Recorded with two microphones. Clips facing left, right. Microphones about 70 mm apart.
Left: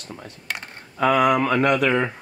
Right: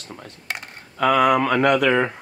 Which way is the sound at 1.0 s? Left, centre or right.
Centre.